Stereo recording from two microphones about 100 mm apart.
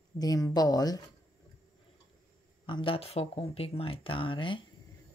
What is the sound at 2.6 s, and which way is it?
Speech, 60° left (ahead or behind).